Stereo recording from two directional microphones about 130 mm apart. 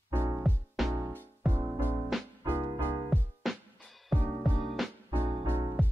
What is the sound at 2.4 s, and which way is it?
Music, 15° right (ahead or behind).